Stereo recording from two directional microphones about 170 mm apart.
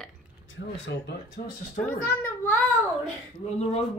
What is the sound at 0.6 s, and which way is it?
Speech, 85° left.